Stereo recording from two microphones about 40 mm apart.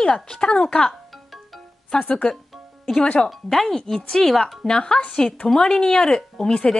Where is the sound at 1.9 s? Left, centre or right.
Centre.